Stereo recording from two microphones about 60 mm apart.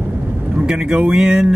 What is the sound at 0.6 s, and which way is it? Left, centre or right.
Speech, centre.